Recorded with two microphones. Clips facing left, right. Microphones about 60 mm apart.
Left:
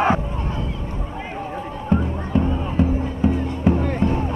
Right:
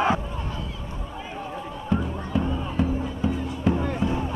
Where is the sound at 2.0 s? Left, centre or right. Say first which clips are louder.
Left 5 dB; centre.